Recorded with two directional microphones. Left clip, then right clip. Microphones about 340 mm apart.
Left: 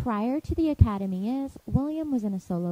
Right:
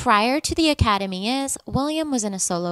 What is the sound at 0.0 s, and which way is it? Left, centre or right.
A woman's voice, centre.